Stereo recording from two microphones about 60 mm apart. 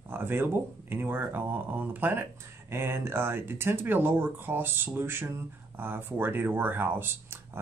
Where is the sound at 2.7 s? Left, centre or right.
Right.